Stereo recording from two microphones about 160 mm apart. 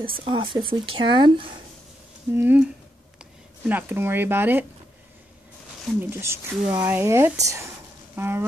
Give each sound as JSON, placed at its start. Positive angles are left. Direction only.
{"t": 0.2, "sound": "speech", "side_deg": -30}
{"t": 2.3, "sound": "speech", "side_deg": -10}
{"t": 5.9, "sound": "speech", "side_deg": -15}